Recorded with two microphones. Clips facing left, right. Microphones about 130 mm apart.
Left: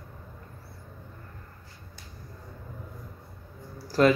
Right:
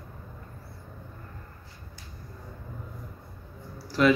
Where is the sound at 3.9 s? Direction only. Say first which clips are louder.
Left 1 dB; 40° left (ahead or behind).